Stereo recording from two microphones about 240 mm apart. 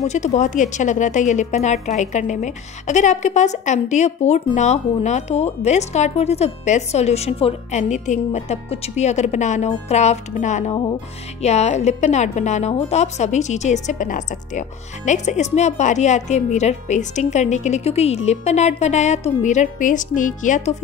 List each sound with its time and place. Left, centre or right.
0.0 s a woman's voice: left